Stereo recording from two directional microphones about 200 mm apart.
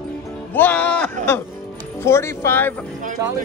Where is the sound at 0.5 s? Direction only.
10° left (ahead or behind).